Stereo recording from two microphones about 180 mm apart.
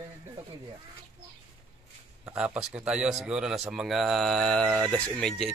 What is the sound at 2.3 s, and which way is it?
Speech, 5° right (ahead or behind).